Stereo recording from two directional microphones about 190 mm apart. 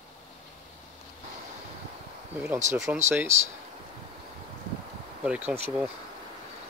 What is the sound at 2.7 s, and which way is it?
Speech, 15° right (ahead or behind).